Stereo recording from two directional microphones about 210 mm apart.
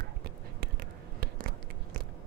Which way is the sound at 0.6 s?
45° right (ahead or behind).